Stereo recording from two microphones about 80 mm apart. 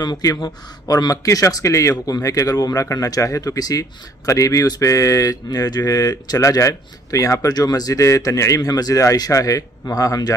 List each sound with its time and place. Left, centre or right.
0.0 s speech: left